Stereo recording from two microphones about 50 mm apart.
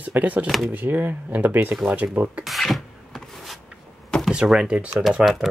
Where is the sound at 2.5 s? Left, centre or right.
Centre.